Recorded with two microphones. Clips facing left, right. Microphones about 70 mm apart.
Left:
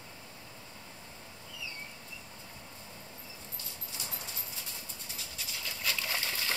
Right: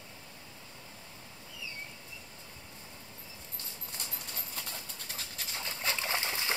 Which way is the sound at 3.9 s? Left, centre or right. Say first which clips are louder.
Left 1 dB; right.